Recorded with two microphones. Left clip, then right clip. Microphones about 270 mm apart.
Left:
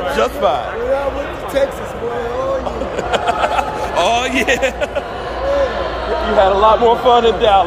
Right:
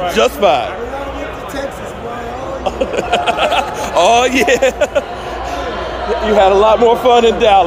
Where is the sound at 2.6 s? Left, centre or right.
Right.